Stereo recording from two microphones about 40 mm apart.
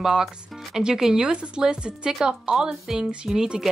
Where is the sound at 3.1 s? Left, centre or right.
Centre.